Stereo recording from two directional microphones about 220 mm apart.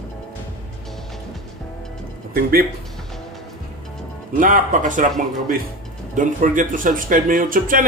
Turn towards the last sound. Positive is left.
turn(degrees=-40)  # may be behind; listen again after turning